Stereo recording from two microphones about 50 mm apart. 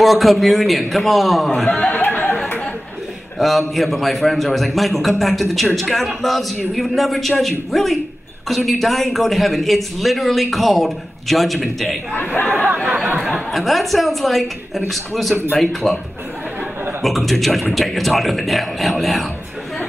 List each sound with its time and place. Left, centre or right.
0.0 s a man's voice: centre
1.7 s a sound: left
3.3 s a man's voice: centre
12.2 s speech: left
12.8 s a sound: centre
13.2 s a woman's voice: centre
17.0 s a man's voice: centre